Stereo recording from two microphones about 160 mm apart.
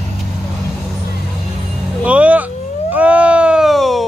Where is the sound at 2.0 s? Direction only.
10° right (ahead or behind).